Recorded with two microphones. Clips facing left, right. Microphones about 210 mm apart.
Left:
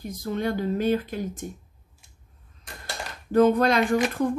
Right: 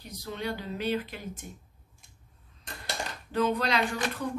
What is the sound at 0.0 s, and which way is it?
Speech, 50° left (ahead or behind).